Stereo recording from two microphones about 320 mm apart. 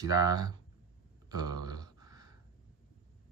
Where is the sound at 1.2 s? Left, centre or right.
Centre.